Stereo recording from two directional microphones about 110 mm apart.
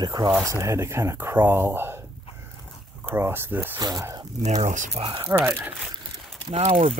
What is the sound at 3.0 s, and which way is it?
Speech, 20° right (ahead or behind).